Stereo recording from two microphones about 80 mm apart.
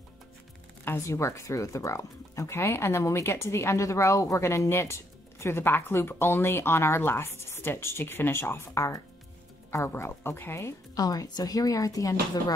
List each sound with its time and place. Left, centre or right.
0.8 s speech: left
11.0 s a woman's voice: left